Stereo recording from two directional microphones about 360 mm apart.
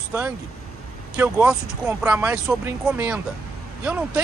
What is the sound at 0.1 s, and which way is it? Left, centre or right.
Speech, centre.